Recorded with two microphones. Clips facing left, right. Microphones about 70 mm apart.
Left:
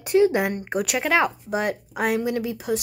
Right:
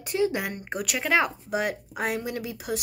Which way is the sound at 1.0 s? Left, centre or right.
Centre.